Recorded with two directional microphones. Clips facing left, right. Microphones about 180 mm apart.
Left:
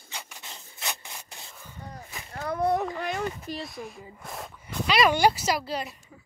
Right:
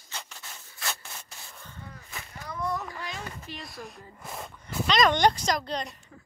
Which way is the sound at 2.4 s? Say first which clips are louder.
Left 8 dB; 60° left (ahead or behind).